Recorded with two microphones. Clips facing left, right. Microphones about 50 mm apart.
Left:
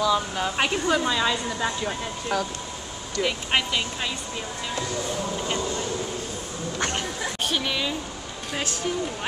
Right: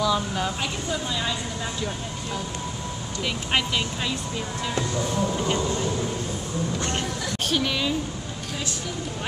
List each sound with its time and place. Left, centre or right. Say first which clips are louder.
0.0 s speech: left 1 dB; centre
0.6 s speech: left 6 dB; left
3.3 s speech: even; centre
7.4 s a woman's voice: right 2 dB; centre